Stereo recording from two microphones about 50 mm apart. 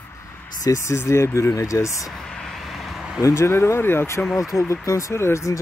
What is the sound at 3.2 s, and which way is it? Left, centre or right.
Speech, left.